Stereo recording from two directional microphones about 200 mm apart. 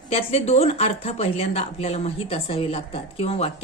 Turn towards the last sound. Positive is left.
turn(degrees=30)  # may be behind; listen again after turning